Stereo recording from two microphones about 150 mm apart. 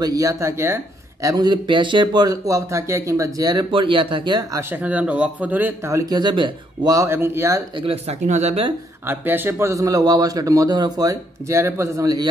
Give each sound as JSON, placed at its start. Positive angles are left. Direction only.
{"t": 0.0, "sound": "a man's voice", "side_deg": -25}
{"t": 4.6, "sound": "speech", "side_deg": -15}
{"t": 7.8, "sound": "speech", "side_deg": -45}
{"t": 9.0, "sound": "a man's voice", "side_deg": -15}